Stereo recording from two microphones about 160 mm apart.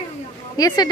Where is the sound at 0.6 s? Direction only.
25° left (ahead or behind).